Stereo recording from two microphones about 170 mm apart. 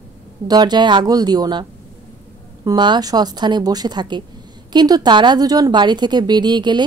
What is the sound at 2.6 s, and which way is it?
A woman's voice, 25° right (ahead or behind).